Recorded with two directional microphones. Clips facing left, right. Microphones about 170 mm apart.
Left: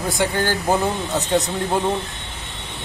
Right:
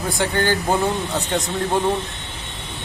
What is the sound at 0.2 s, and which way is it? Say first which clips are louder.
A man's voice: right 1 dB; 5° left (ahead or behind).